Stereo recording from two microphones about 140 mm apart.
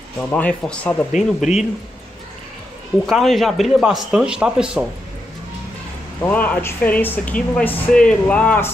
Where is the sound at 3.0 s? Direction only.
Centre (ahead or behind).